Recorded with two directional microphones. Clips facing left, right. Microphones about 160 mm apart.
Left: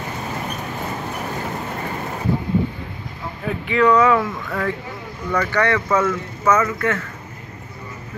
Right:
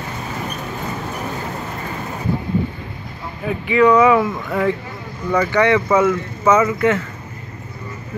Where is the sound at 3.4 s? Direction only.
5° right (ahead or behind).